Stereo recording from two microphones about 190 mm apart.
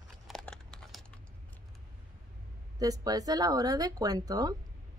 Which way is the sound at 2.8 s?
20° right (ahead or behind).